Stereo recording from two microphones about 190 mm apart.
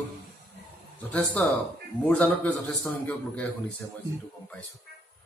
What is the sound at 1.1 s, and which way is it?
Speech, 10° left (ahead or behind).